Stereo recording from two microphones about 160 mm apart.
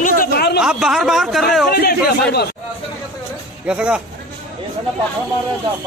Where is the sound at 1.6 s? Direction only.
70° left (ahead or behind).